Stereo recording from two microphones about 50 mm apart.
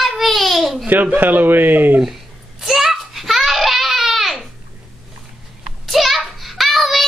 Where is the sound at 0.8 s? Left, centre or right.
Right.